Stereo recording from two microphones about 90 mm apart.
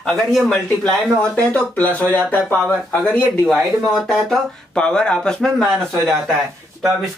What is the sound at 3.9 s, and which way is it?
Speech, 5° left (ahead or behind).